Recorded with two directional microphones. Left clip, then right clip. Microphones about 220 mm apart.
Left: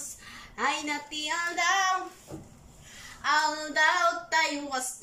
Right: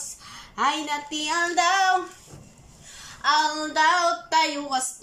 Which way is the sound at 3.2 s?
10° right (ahead or behind).